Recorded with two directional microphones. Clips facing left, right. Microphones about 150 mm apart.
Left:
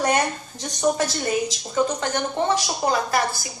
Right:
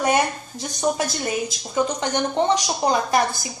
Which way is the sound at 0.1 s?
10° right (ahead or behind).